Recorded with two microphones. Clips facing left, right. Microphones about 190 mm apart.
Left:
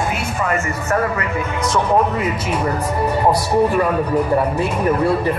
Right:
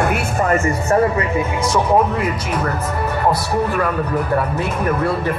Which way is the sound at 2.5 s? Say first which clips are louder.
Left 1 dB; 15° left (ahead or behind).